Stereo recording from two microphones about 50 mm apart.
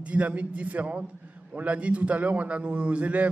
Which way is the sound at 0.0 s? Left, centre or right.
Right.